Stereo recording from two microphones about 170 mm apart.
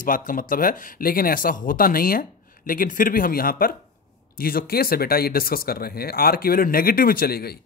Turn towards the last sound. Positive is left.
turn(degrees=65)  # may be behind; listen again after turning